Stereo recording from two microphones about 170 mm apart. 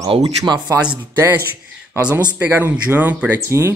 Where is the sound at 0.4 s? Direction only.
20° right (ahead or behind).